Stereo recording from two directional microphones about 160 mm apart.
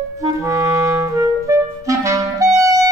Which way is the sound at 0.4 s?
20° right (ahead or behind).